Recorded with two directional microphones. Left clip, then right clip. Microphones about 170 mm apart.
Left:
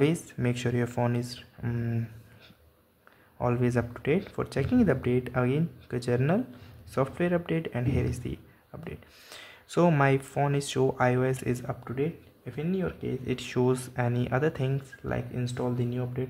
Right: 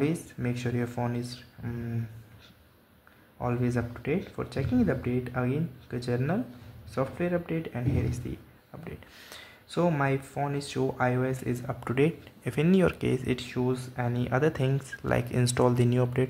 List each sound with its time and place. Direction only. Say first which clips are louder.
0.0 s speech: left 3 dB; 15° left (ahead or behind)
3.3 s speech: left 3 dB; 15° left (ahead or behind)
11.8 s speech: right 5 dB; 20° right (ahead or behind)
13.5 s speech: left 3 dB; 15° left (ahead or behind); by 15.4 s 10° right (ahead or behind)
15.4 s speech: right 8 dB; 20° right (ahead or behind)